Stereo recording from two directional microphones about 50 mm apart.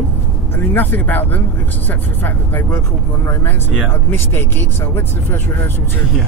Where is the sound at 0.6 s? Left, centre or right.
Left.